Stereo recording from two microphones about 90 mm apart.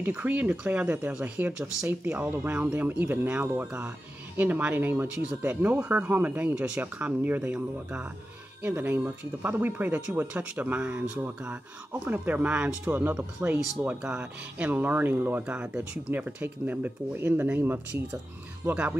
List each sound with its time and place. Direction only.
0.0 s speech: 20° right (ahead or behind)
1.9 s speech: 20° right (ahead or behind)